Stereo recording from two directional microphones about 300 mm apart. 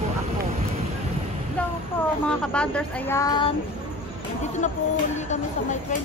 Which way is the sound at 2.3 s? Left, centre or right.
Centre.